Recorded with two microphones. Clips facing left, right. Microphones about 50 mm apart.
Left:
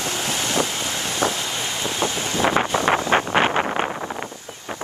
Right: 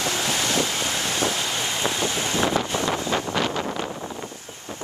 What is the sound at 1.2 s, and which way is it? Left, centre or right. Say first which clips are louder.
Wind: left 4 dB; left.